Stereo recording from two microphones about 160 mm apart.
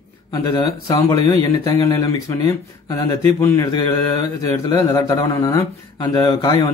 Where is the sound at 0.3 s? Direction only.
25° left (ahead or behind).